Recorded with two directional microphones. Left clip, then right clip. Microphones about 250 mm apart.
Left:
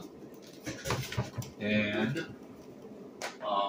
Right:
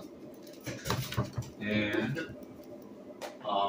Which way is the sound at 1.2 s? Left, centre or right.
Right.